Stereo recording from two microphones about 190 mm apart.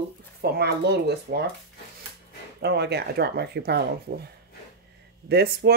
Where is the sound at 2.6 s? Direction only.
60° right (ahead or behind).